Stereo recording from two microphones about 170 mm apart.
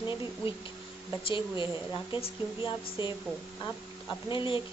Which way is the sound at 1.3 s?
30° left (ahead or behind).